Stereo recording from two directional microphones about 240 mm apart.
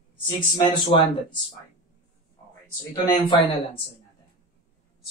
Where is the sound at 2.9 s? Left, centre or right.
Centre.